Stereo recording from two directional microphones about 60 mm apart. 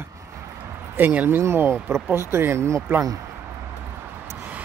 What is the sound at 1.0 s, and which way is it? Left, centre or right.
Speech, right.